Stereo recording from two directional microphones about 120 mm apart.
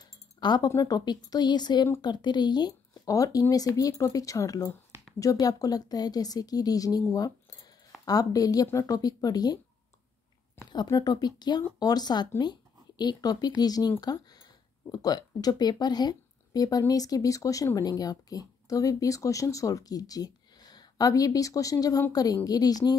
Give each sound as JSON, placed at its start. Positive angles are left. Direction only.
{"t": 0.0, "sound": "chink", "side_deg": 35}
{"t": 0.7, "sound": "speech", "side_deg": 30}
{"t": 10.7, "sound": "speech", "side_deg": 35}